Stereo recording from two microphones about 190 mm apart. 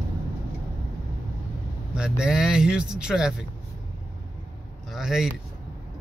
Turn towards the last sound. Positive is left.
turn(degrees=-5)  # may be behind; listen again after turning